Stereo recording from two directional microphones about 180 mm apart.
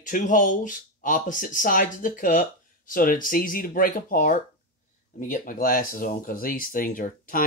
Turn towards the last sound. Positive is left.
turn(degrees=50)  # may be behind; listen again after turning